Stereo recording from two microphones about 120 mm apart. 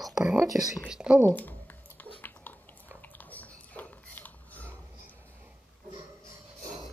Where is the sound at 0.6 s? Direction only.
5° right (ahead or behind).